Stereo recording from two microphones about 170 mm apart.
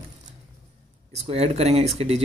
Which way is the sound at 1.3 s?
40° right (ahead or behind).